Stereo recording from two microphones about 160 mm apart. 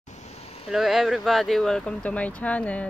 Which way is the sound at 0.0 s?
45° left (ahead or behind).